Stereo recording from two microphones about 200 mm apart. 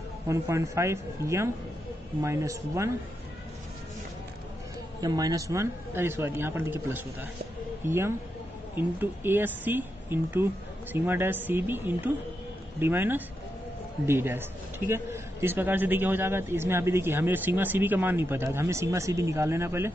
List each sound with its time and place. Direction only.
0.3 s a man's voice: 15° right (ahead or behind)
5.0 s a man's voice: 20° right (ahead or behind)